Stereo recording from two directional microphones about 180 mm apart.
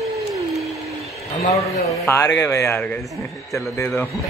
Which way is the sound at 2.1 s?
15° left (ahead or behind).